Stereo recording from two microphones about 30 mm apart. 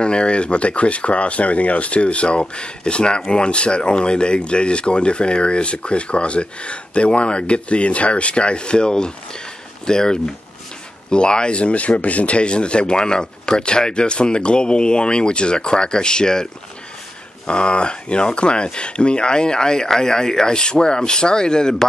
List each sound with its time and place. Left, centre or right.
0.0 s speech: left
12.0 s speech: left
12.4 s speech: left
17.5 s speech: left